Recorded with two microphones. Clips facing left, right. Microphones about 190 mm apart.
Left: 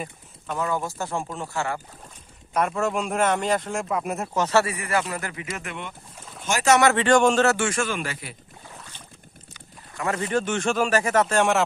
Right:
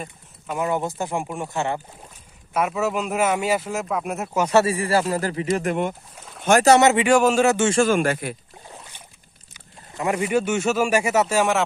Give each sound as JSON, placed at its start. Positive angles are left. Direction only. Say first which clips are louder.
{"t": 0.6, "sound": "speech", "louder": "right 3 dB", "side_deg": -20}
{"t": 2.5, "sound": "speech", "louder": "right 1 dB", "side_deg": -5}
{"t": 4.6, "sound": "speech", "louder": "right 6 dB", "side_deg": -30}
{"t": 6.5, "sound": "speech", "louder": "right 10 dB", "side_deg": -60}
{"t": 6.8, "sound": "speech", "louder": "right 2 dB", "side_deg": -15}
{"t": 7.8, "sound": "speech", "louder": "right 9 dB", "side_deg": -45}
{"t": 9.5, "sound": "speech", "louder": "right 3 dB", "side_deg": -15}